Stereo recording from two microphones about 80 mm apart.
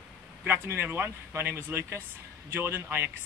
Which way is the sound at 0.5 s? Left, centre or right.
Right.